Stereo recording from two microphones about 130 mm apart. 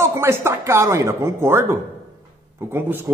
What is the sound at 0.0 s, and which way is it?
Speech, 20° right (ahead or behind).